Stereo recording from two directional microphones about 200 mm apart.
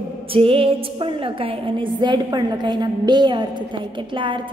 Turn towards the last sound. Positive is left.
turn(degrees=-25)  # may be behind; listen again after turning